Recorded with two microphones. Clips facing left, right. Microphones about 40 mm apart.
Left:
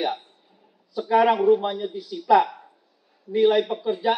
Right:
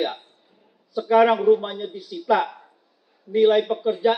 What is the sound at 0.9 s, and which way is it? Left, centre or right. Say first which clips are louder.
A man's voice: right 2 dB; centre.